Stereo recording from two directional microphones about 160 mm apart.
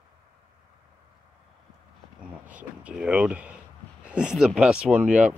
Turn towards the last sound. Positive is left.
turn(degrees=-10)  # may be behind; listen again after turning